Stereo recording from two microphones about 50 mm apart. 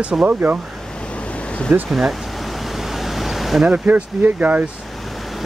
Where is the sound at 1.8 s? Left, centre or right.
Centre.